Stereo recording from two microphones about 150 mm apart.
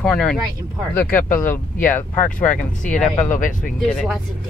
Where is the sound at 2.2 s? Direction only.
60° left (ahead or behind).